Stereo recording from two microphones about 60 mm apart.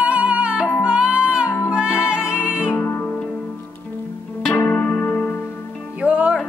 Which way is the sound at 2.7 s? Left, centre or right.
Left.